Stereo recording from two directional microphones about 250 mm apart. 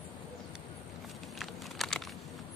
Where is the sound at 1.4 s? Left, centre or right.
Centre.